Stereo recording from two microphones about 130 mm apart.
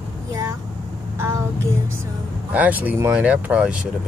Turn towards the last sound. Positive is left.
turn(degrees=-10)  # may be behind; listen again after turning